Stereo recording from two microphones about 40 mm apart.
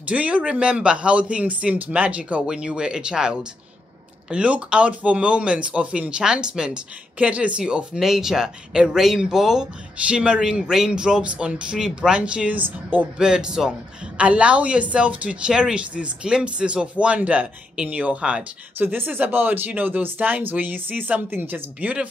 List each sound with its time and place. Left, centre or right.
0.1 s a woman's voice: right
0.5 s a woman's voice: right
2.4 s speech: right
7.2 s a woman's voice: right
8.0 s speech: centre
10.0 s speech: right
12.2 s a woman's voice: right
13.2 s speech: centre
14.1 s a woman's voice: right
15.4 s a woman's voice: right
18.8 s a woman's voice: right